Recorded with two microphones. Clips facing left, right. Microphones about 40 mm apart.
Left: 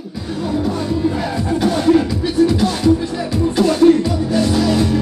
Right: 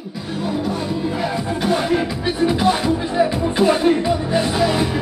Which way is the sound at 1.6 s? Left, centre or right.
Centre.